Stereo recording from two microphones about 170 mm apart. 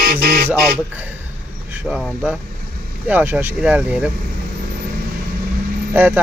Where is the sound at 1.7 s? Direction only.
5° right (ahead or behind).